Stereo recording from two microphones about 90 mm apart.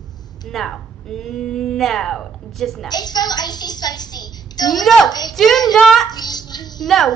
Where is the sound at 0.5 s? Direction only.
5° left (ahead or behind).